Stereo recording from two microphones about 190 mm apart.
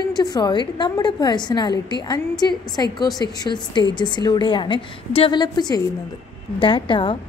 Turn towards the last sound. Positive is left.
turn(degrees=25)  # may be behind; listen again after turning